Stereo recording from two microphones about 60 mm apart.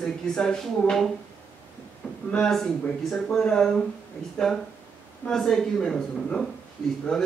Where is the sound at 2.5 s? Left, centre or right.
Centre.